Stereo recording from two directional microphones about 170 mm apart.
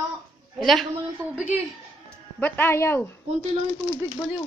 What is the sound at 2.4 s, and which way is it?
Speech, 10° left (ahead or behind).